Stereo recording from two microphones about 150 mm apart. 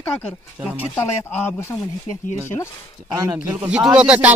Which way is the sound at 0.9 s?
15° left (ahead or behind).